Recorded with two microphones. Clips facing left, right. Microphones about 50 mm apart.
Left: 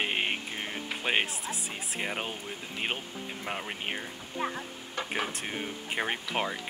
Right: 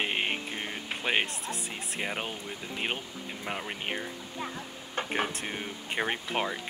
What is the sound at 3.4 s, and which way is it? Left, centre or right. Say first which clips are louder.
Speech: right 1 dB; centre.